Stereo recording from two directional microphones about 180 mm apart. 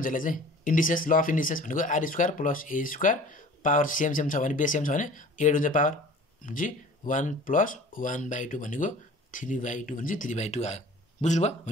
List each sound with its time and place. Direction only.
0.0 s speech: 50° left (ahead or behind)